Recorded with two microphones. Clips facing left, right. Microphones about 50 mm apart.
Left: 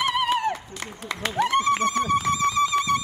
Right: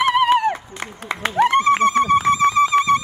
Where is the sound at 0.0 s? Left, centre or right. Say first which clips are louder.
Right 7 dB; right.